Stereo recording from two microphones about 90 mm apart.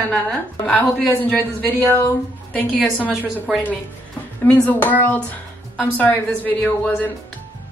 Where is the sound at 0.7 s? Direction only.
20° left (ahead or behind).